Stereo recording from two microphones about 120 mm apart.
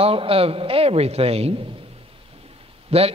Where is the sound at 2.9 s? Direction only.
55° right (ahead or behind).